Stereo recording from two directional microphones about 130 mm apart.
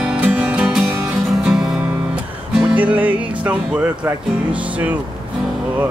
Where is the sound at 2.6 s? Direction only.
10° right (ahead or behind).